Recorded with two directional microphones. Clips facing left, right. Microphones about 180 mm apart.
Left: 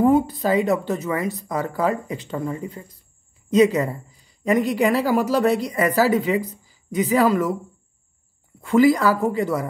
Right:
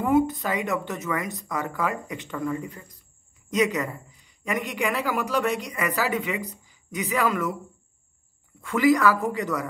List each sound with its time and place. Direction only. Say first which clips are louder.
0.0 s speech: left 4 dB; 35° left (ahead or behind)
8.5 s speech: left 4 dB; 30° left (ahead or behind)